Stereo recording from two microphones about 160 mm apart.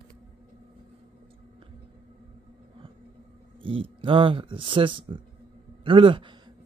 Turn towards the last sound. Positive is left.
turn(degrees=-35)  # may be behind; listen again after turning